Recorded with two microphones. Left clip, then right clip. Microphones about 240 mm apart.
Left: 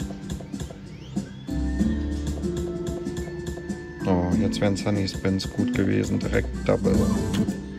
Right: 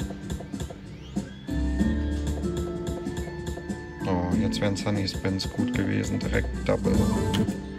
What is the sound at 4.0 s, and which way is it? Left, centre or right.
Speech, centre.